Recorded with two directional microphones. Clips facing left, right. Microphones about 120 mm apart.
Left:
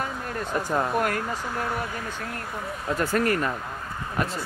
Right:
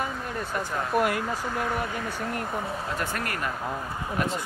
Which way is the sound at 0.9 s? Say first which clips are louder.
Right 1 dB; 5° right (ahead or behind).